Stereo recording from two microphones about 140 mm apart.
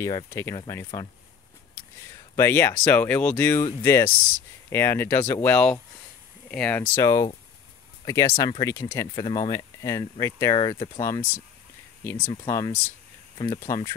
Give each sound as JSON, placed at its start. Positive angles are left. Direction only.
{"t": 0.0, "sound": "speech", "side_deg": 20}
{"t": 2.0, "sound": "a sound", "side_deg": 15}
{"t": 2.8, "sound": "speech", "side_deg": 10}
{"t": 7.0, "sound": "speech", "side_deg": 25}